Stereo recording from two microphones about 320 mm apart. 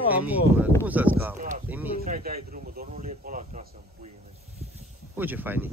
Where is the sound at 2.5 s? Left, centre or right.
Right.